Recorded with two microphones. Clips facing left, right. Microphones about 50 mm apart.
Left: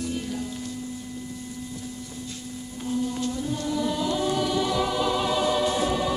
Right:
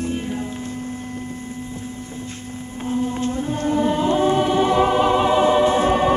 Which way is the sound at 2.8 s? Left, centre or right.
Right.